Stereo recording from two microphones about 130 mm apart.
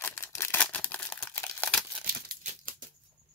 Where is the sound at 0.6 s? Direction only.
10° left (ahead or behind).